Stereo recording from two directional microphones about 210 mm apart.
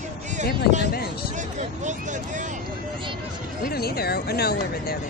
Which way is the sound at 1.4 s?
35° right (ahead or behind).